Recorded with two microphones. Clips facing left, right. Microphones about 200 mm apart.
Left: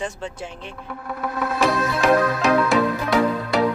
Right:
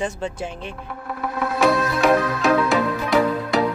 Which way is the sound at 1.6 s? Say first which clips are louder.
Right 3 dB; centre (ahead or behind).